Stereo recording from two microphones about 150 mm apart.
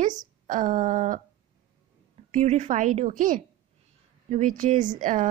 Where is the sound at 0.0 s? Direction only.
60° right (ahead or behind).